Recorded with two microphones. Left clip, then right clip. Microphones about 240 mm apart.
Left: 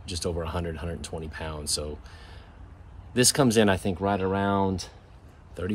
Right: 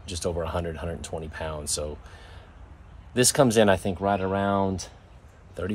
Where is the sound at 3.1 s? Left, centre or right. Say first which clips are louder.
Right 2 dB; centre.